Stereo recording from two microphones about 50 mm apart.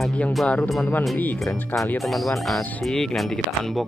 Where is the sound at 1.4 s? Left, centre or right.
Centre.